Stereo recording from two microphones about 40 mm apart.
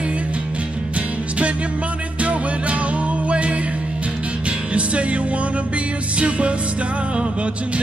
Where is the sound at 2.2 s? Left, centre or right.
Right.